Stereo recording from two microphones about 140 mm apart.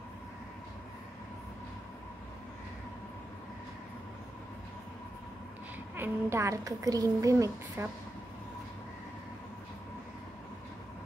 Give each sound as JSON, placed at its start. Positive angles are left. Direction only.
{"t": 5.9, "sound": "a woman's voice", "side_deg": -15}